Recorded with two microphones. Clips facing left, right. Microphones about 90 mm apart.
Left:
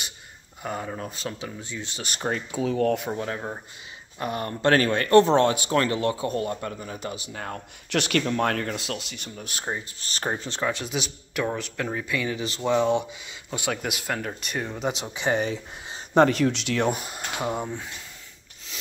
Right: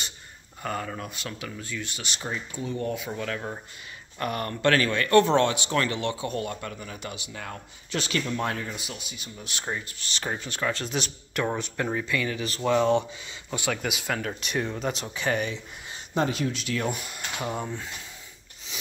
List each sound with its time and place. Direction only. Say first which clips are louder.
0.6 s speech: even; 15° left (ahead or behind)
0.8 s speech: left 3 dB; 30° left (ahead or behind)
2.0 s speech: left 7 dB; 50° left (ahead or behind)
2.5 s speech: left 8 dB; 90° left
3.1 s speech: left 2 dB; 25° left (ahead or behind)
7.9 s speech: left 5 dB; 60° left (ahead or behind); by 9.3 s 80° left
9.4 s speech: left 1 dB; 40° left (ahead or behind)
10.3 s speech: left 2 dB; 25° left (ahead or behind)
10.6 s speech: left 1 dB; 15° left (ahead or behind)
10.9 s speech: even; 5° left (ahead or behind)
12.0 s speech: left 1 dB; 15° left (ahead or behind)
12.7 s speech: even; 10° left (ahead or behind); by 16.0 s 30° left (ahead or behind)
16.2 s speech: left 8 dB; 60° left (ahead or behind)
16.8 s speech: left 5 dB; 30° left (ahead or behind); by 17.9 s 15° left (ahead or behind)